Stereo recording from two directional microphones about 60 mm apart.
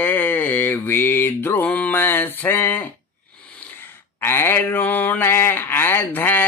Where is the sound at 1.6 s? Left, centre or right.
Left.